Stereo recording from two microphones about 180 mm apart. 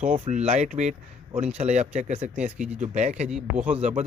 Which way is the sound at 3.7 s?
40° right (ahead or behind).